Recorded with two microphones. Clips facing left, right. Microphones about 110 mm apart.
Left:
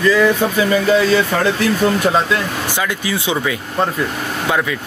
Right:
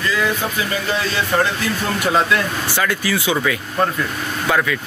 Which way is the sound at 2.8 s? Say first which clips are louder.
Right 2 dB; 20° left (ahead or behind).